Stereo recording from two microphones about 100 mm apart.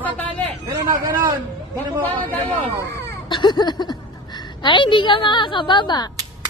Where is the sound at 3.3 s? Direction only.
50° left (ahead or behind).